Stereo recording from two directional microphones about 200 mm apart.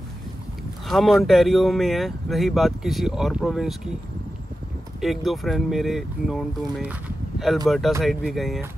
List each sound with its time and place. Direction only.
0.8 s speech: centre (ahead or behind)
5.0 s speech: centre (ahead or behind)
6.8 s a sound: 5° right (ahead or behind)
7.6 s speech: centre (ahead or behind)